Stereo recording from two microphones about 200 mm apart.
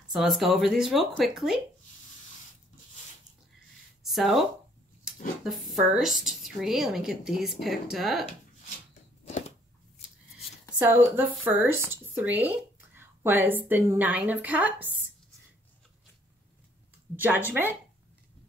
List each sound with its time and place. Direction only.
0.1 s a woman's voice: centre (ahead or behind)
4.0 s a woman's voice: centre (ahead or behind)
10.8 s speech: 10° right (ahead or behind)
17.1 s speech: 10° right (ahead or behind)